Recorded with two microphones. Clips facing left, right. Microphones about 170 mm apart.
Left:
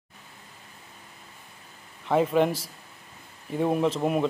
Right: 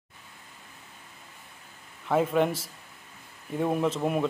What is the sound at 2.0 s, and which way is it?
Speech, centre (ahead or behind).